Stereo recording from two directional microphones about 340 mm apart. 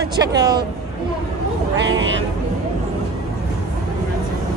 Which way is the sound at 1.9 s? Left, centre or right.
Right.